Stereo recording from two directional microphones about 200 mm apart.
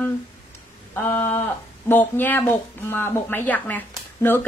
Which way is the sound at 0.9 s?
10° left (ahead or behind).